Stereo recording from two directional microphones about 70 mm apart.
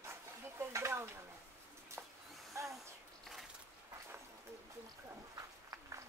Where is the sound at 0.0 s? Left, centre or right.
Right.